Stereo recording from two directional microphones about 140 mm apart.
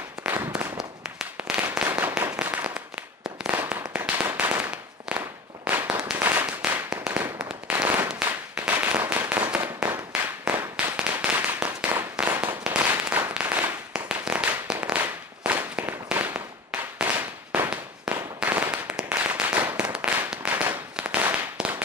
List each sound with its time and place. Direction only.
0.7 s firecracker: 5° right (ahead or behind)
1.6 s firecracker: 15° right (ahead or behind)